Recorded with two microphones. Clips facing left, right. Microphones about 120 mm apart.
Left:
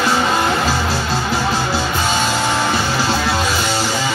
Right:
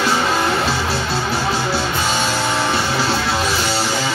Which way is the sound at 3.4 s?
15° left (ahead or behind).